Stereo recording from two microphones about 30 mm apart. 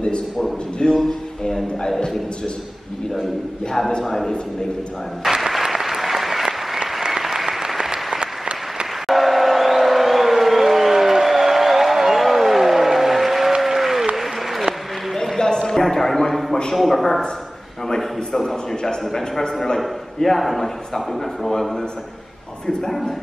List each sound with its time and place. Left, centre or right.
0.8 s speech: left
4.0 s a man's voice: centre
5.5 s applause: centre
8.2 s applause: right
9.0 s vehicle: centre
13.7 s applause: centre
15.3 s a sound: left; by 16.5 s centre
16.7 s a man's voice: centre
20.2 s a man's voice: centre
22.7 s a man's voice: centre